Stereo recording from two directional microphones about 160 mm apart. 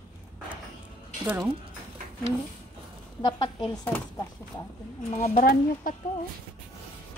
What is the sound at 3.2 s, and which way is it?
Speech, 25° left (ahead or behind).